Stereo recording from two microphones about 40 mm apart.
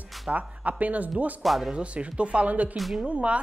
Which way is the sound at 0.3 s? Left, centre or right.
Right.